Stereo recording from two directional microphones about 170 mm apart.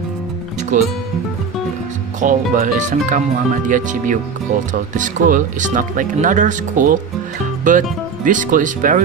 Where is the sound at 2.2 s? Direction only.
50° right (ahead or behind).